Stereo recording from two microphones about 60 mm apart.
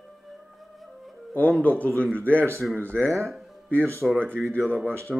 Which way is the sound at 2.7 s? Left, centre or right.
Right.